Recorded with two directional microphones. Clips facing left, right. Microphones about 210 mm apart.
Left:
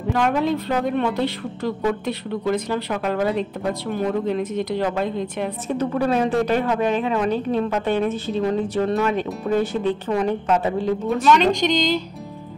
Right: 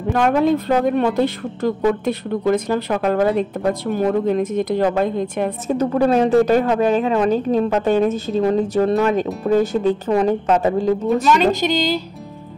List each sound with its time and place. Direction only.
0.1 s a woman's voice: 50° right (ahead or behind)
11.2 s a woman's voice: 5° right (ahead or behind)